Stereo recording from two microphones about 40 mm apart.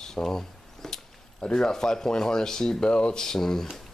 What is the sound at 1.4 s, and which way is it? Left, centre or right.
Speech, centre.